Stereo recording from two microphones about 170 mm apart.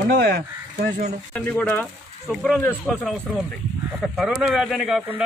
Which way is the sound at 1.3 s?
10° left (ahead or behind).